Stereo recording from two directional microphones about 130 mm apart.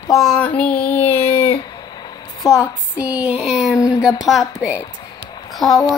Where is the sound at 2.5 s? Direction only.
10° right (ahead or behind).